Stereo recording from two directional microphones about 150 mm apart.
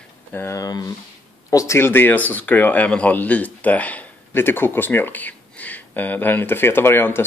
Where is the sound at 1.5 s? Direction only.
20° left (ahead or behind).